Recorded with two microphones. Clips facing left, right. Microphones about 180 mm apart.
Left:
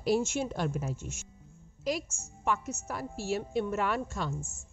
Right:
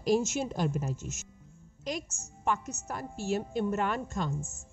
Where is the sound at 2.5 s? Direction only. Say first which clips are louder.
Even; 5° left (ahead or behind).